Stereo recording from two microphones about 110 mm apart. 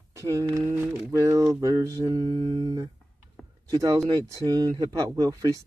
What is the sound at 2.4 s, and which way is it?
Speech, 35° right (ahead or behind).